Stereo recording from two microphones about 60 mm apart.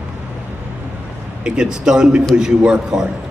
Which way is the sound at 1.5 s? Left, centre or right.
Centre.